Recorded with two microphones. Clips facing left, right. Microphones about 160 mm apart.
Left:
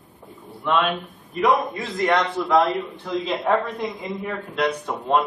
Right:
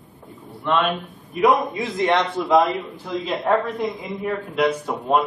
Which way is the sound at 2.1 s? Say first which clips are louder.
Right 1 dB; centre (ahead or behind).